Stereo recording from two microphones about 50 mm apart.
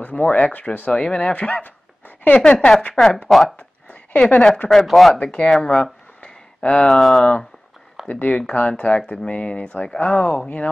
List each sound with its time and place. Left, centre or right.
0.0 s speech: left
1.3 s a sound: left
2.9 s speech: centre
3.3 s speech: centre
3.5 s a sound: left
4.2 s speech: left
4.6 s speech: centre
5.2 s speech: left
5.5 s speech: centre
6.2 s a sound: left
6.9 s speech: centre
8.1 s speech: left